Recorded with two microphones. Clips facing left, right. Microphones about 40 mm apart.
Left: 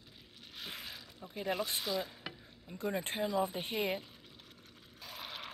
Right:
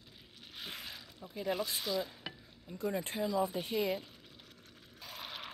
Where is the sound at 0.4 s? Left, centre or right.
Centre.